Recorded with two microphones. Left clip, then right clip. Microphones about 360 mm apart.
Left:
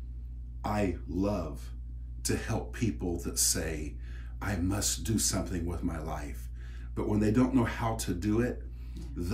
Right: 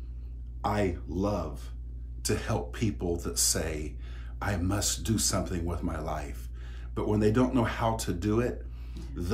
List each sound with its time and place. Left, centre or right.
0.6 s speech: centre
2.2 s speech: centre